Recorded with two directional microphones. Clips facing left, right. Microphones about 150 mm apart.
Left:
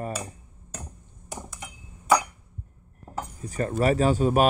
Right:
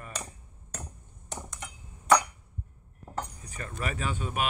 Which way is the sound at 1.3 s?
5° left (ahead or behind).